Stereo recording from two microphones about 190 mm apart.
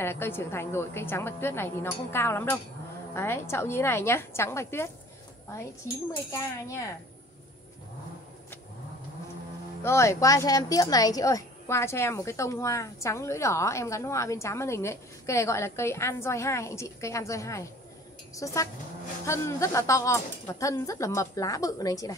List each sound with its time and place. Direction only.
0.0 s a woman's voice: 10° left (ahead or behind)
6.1 s a woman's voice: 15° left (ahead or behind)
9.8 s a woman's voice: 15° left (ahead or behind)